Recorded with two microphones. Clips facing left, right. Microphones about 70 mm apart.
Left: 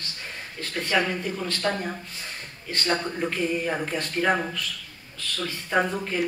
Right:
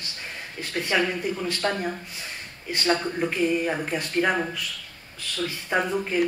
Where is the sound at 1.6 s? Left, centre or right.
Centre.